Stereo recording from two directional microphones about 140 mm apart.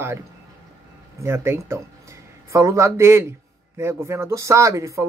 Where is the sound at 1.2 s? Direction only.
20° right (ahead or behind).